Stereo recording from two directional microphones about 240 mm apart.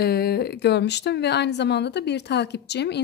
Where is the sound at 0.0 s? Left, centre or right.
Left.